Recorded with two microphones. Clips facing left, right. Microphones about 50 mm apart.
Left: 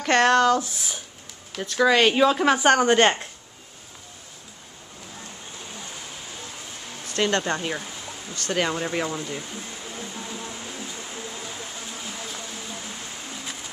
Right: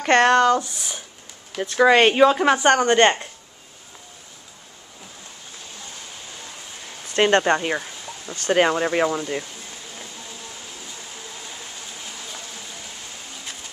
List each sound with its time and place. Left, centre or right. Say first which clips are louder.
0.0 s speech: right 3 dB; centre
1.9 s speech: right 4 dB; right
2.3 s speech: right 1 dB; centre
7.2 s speech: right 6 dB; right
9.9 s a sound: left 4 dB; left
12.3 s a sound: left 1 dB; centre